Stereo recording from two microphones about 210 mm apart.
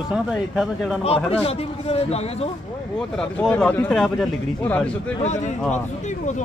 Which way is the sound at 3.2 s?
5° left (ahead or behind).